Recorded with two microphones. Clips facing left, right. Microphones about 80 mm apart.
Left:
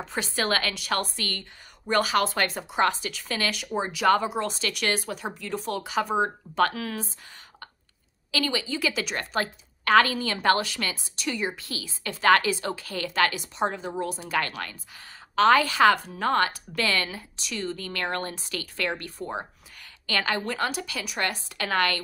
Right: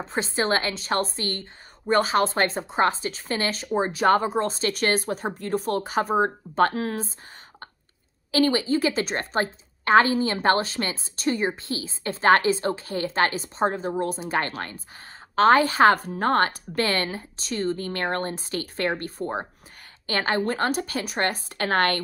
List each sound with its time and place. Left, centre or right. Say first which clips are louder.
0.0 s a woman's voice: right 3 dB; right
8.3 s a woman's voice: right 7 dB; right